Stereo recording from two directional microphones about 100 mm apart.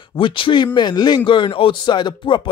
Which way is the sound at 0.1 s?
55° left (ahead or behind).